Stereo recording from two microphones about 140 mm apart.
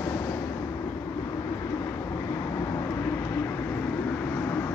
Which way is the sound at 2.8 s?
15° left (ahead or behind).